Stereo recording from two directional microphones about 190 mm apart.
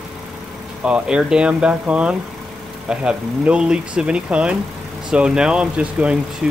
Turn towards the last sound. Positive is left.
turn(degrees=-5)  # may be behind; listen again after turning